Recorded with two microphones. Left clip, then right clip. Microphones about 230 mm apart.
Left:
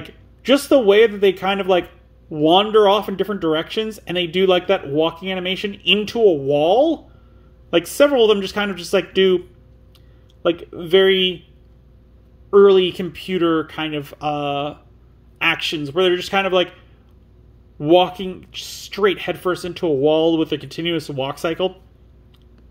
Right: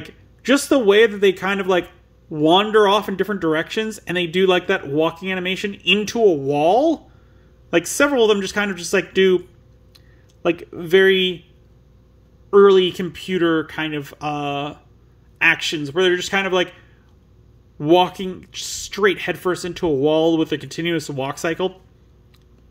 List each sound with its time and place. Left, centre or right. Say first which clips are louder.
0.0 s speech: left 1 dB; centre
10.4 s speech: left 1 dB; right
12.4 s speech: even; centre
17.7 s speech: left 1 dB; right